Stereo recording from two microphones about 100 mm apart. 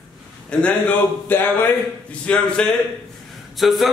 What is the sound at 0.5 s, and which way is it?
A man's voice, 10° left (ahead or behind).